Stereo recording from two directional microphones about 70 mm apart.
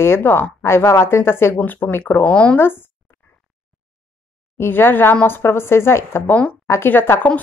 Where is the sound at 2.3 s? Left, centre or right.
Centre.